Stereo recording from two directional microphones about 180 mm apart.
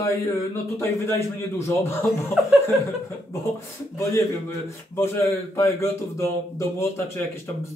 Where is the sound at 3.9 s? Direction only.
15° left (ahead or behind).